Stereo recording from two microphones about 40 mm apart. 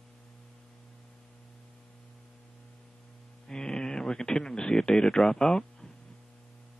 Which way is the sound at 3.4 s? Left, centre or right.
Centre.